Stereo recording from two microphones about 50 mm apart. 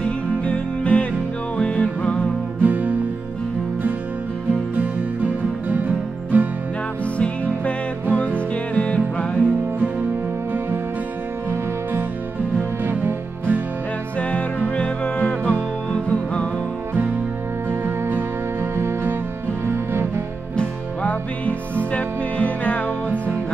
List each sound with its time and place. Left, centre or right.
0.0 s music: left
2.6 s music: right
5.7 s music: right
7.2 s music: left
12.8 s music: right
14.8 s music: left
18.6 s music: right
20.5 s music: left